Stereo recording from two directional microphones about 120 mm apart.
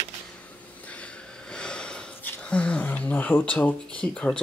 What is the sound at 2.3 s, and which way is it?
Speech, 10° left (ahead or behind).